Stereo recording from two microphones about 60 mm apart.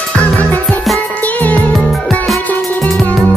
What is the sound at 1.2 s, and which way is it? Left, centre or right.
Music, left.